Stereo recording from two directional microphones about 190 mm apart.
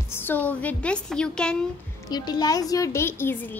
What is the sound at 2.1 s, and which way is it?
Speech, 20° left (ahead or behind).